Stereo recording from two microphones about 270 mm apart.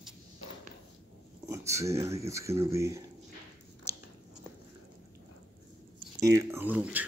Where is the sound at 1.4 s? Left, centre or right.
Centre.